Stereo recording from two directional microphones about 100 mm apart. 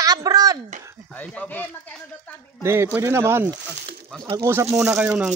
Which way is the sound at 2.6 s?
25° right (ahead or behind).